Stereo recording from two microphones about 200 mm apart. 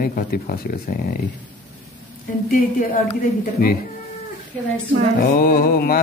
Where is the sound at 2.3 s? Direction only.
40° left (ahead or behind).